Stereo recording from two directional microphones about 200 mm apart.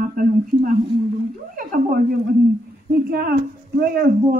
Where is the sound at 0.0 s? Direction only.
45° right (ahead or behind).